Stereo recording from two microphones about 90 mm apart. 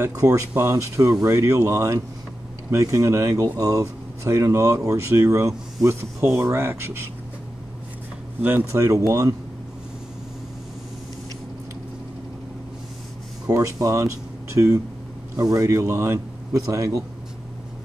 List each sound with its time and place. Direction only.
0.0 s speech: 40° right (ahead or behind)
8.4 s speech: 20° right (ahead or behind)
8.7 s speech: 40° right (ahead or behind)
13.5 s speech: 40° right (ahead or behind)